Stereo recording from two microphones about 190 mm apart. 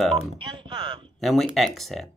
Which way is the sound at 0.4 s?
25° right (ahead or behind).